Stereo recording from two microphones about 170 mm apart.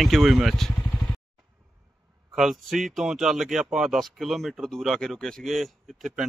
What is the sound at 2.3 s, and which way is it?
Speech, centre (ahead or behind).